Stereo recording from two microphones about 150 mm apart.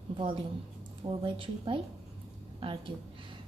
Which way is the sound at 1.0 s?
30° right (ahead or behind).